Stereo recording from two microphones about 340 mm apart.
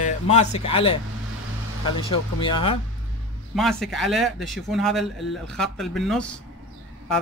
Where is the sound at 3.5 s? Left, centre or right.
Centre.